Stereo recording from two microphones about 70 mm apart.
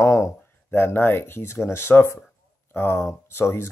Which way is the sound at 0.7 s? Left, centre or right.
Left.